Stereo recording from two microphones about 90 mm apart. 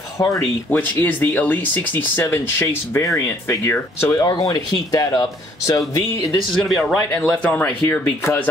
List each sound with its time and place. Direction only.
0.2 s speech: 35° left (ahead or behind)
0.7 s speech: 20° left (ahead or behind)
2.2 s speech: 30° left (ahead or behind)
4.2 s speech: 45° left (ahead or behind)
6.5 s speech: 5° left (ahead or behind); by 8.5 s 25° left (ahead or behind)